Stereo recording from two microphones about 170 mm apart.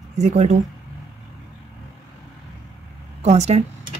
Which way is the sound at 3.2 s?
40° right (ahead or behind).